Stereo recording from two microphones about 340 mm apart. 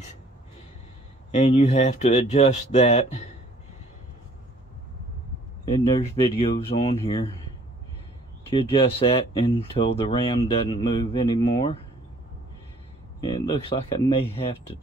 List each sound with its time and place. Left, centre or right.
1.3 s speech: centre
5.7 s speech: centre
8.5 s speech: centre
13.2 s speech: centre